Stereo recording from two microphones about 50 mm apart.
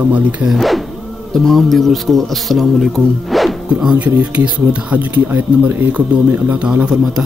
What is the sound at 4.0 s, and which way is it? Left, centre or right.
Speech, right.